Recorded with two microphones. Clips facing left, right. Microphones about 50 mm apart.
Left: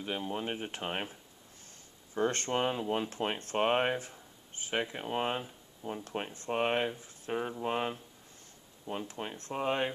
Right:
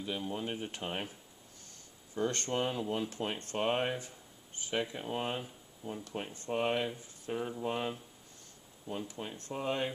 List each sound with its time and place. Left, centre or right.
0.0 s speech: left
2.1 s speech: left